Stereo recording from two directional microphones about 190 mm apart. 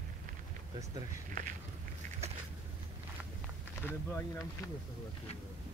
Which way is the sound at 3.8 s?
10° left (ahead or behind).